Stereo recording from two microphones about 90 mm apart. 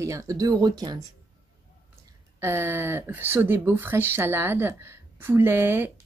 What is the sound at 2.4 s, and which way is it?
Speech, 30° right (ahead or behind).